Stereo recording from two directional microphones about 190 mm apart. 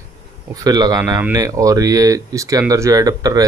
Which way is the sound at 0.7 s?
20° right (ahead or behind).